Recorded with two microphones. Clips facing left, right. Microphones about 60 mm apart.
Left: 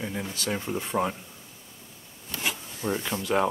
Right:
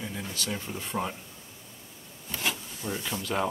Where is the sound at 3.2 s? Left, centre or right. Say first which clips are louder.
Left 5 dB; centre.